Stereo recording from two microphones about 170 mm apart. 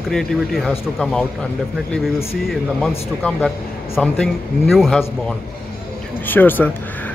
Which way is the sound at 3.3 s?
Centre (ahead or behind).